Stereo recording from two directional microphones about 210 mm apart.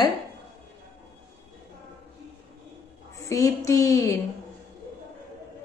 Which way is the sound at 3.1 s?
15° left (ahead or behind).